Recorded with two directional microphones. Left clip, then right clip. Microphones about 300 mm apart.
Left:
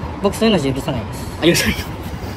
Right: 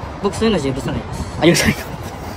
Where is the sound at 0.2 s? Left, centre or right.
Centre.